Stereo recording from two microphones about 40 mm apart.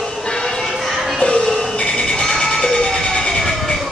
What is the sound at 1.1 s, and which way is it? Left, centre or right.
Music, left.